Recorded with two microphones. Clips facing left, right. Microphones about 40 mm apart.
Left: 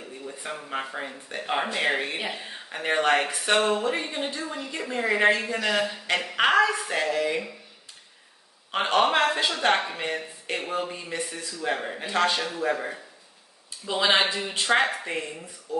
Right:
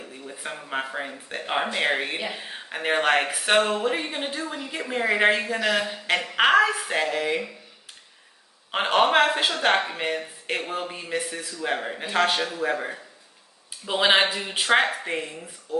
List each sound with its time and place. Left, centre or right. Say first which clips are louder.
0.3 s speech: right 2 dB; centre
9.0 s speech: right 3 dB; centre
9.6 s speech: right 1 dB; centre
12.3 s speech: right 1 dB; centre
13.8 s speech: right 2 dB; right; by 15.4 s centre